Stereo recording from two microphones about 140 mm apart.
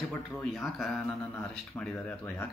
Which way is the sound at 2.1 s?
15° left (ahead or behind).